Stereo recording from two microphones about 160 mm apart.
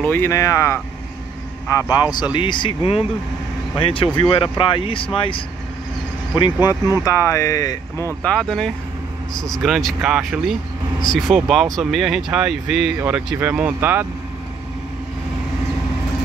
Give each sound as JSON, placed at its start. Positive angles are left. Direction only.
{"t": 0.0, "sound": "speech", "side_deg": 15}
{"t": 1.9, "sound": "speech", "side_deg": 25}
{"t": 8.2, "sound": "speech", "side_deg": 5}